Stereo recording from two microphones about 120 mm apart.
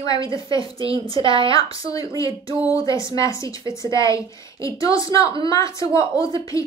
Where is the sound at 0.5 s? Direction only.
30° left (ahead or behind).